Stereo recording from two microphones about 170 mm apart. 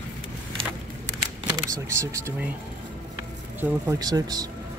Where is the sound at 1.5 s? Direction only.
20° right (ahead or behind).